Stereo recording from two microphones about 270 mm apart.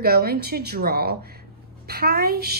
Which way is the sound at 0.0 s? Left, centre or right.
Right.